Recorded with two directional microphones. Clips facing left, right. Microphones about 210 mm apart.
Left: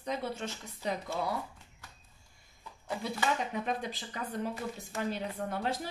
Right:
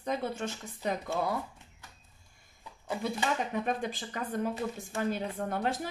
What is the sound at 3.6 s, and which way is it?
Speech, 50° right (ahead or behind).